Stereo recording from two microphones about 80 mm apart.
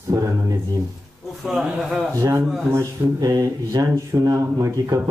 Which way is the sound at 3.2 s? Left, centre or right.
Right.